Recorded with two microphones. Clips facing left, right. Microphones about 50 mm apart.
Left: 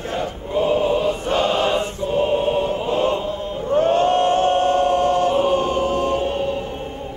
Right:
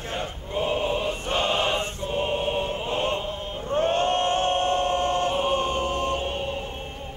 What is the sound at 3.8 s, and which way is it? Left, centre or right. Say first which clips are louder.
Choir: left 6 dB; right.